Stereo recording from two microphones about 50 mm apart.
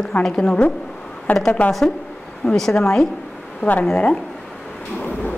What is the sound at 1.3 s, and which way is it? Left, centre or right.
Speech, left.